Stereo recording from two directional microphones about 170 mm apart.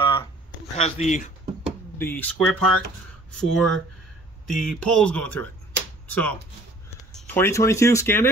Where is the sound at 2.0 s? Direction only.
10° left (ahead or behind).